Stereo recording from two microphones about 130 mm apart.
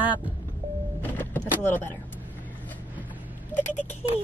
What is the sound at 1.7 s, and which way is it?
Vehicle, 15° left (ahead or behind).